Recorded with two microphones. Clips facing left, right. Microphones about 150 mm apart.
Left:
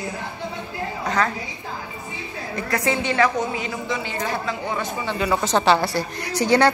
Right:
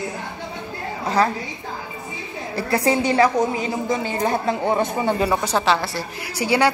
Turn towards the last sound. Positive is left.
turn(degrees=-10)  # may be behind; listen again after turning